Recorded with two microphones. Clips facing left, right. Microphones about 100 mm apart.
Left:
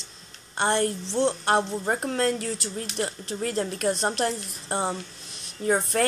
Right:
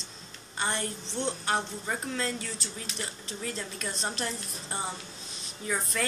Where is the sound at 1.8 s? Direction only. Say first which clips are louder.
Left 8 dB; 50° left (ahead or behind); by 4.9 s 70° left (ahead or behind).